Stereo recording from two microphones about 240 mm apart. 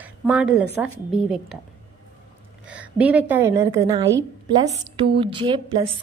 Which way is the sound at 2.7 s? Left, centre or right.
Centre.